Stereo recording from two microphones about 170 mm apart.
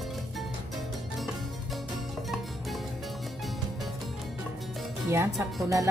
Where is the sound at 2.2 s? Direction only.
Centre (ahead or behind).